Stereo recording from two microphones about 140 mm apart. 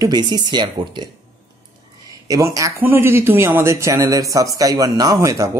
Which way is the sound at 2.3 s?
25° right (ahead or behind).